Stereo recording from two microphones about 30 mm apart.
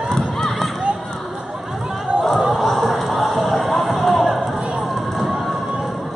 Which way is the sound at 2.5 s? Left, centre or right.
Centre.